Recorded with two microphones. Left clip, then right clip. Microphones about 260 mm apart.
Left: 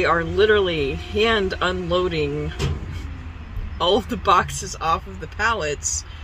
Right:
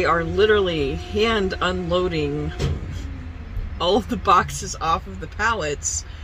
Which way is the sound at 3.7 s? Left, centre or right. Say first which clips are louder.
Left 1 dB; centre.